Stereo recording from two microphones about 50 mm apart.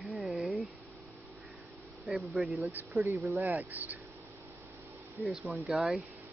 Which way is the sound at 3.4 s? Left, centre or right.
Right.